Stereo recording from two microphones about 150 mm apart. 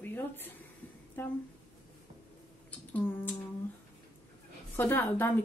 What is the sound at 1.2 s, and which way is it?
Speech, 15° left (ahead or behind).